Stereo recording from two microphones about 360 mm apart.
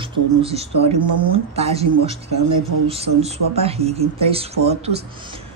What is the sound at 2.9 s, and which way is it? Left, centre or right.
A woman's voice, centre.